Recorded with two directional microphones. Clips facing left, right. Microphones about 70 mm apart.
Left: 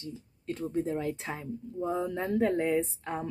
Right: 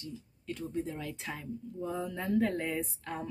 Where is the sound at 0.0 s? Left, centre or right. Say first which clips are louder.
Left 3 dB; left.